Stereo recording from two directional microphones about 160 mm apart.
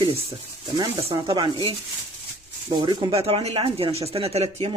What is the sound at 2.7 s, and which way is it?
Speech, 30° right (ahead or behind).